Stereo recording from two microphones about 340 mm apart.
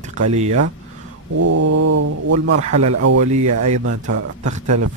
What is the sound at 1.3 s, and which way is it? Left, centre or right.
Speech, right.